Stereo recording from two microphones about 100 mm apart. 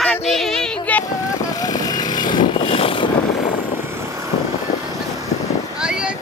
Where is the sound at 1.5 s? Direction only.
40° left (ahead or behind).